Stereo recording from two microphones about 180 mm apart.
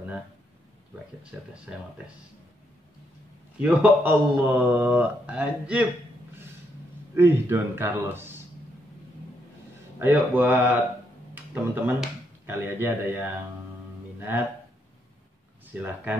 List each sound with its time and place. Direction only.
1.3 s speech: 5° right (ahead or behind)
3.6 s speech: 10° right (ahead or behind)
7.2 s speech: 15° right (ahead or behind)
9.9 s speech: 10° right (ahead or behind)
15.7 s speech: 10° right (ahead or behind)